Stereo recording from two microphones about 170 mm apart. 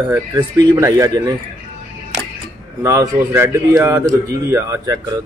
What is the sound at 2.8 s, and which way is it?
Speech, 15° right (ahead or behind).